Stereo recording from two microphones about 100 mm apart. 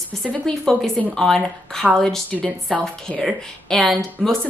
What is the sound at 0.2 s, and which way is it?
Speech, centre (ahead or behind).